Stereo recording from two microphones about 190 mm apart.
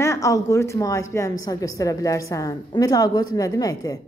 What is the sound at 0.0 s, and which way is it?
A woman's voice, 15° left (ahead or behind).